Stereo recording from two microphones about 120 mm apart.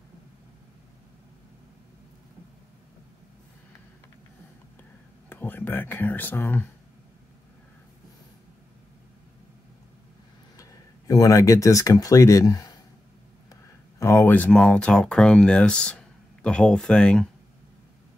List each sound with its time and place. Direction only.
5.3 s speech: 15° left (ahead or behind)
10.6 s speech: 30° left (ahead or behind); by 17.3 s 10° left (ahead or behind)